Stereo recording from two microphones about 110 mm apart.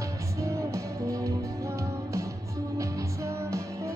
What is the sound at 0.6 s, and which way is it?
Music, 25° right (ahead or behind).